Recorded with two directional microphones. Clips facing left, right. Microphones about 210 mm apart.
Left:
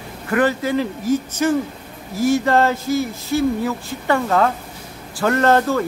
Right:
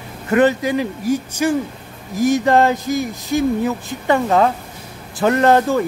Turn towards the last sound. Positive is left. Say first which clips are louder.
# right 2 dB
turn(degrees=-15)  # may be behind; listen again after turning